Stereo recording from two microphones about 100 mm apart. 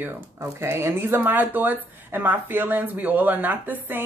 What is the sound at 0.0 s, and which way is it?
Speech, 25° right (ahead or behind).